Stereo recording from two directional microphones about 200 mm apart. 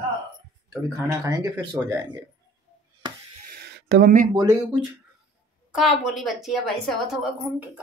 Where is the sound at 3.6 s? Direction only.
55° right (ahead or behind).